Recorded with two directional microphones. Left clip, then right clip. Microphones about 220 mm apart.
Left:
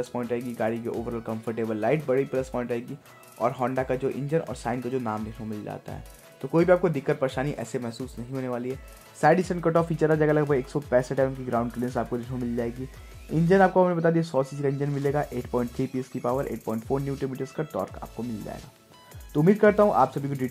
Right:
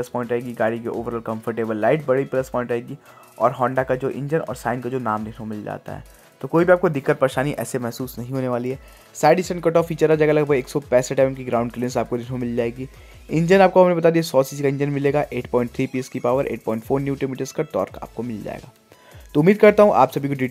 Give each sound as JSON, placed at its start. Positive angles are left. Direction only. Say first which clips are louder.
{"t": 0.0, "sound": "speech", "louder": "right 6 dB", "side_deg": -15}
{"t": 6.4, "sound": "speech", "louder": "right 5 dB", "side_deg": -15}
{"t": 8.3, "sound": "speech", "louder": "right 7 dB", "side_deg": -35}
{"t": 9.2, "sound": "speech", "louder": "right 5 dB", "side_deg": -10}